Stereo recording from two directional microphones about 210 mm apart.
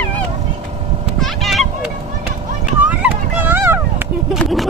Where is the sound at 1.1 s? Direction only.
Centre (ahead or behind).